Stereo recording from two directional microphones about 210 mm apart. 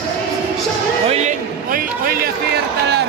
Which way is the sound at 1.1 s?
40° right (ahead or behind).